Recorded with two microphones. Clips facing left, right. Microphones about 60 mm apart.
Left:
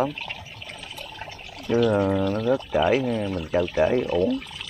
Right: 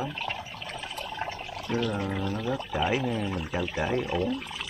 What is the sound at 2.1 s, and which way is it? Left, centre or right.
Pour, centre.